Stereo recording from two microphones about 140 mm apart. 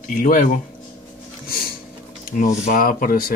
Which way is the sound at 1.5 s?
90° left.